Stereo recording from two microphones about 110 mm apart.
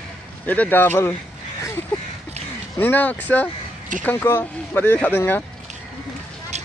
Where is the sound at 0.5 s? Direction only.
15° left (ahead or behind).